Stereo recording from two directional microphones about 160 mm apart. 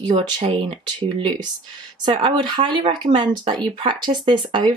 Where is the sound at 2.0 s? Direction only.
30° right (ahead or behind).